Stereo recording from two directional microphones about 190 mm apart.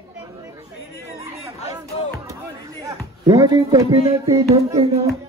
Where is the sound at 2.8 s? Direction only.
20° right (ahead or behind).